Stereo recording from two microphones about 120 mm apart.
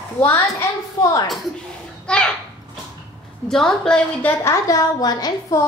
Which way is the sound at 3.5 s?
5° left (ahead or behind).